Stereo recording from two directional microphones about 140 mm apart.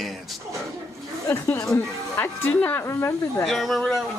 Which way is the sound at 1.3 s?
15° left (ahead or behind).